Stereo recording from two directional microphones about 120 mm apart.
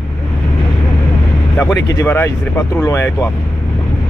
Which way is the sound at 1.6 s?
25° left (ahead or behind).